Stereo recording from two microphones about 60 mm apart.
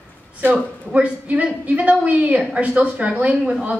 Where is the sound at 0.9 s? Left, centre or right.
Right.